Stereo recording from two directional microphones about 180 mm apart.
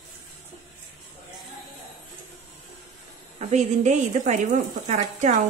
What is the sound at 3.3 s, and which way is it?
A woman's voice, 40° right (ahead or behind).